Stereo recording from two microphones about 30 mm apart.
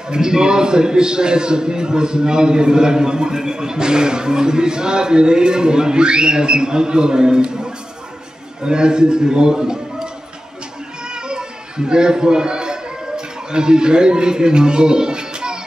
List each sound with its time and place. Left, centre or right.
0.1 s a man's voice: right
11.2 s children playing: right